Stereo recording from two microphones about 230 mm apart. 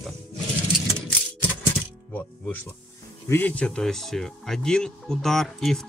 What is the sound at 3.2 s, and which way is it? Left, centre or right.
Speech, centre.